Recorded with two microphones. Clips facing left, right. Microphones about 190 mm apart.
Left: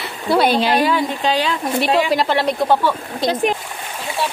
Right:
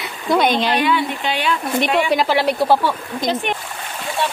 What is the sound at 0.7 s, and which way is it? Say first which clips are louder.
Speech: left 1 dB; 40° left (ahead or behind).